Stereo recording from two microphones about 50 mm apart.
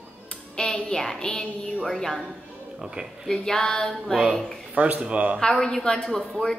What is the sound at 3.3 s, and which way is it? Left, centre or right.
Speech, centre.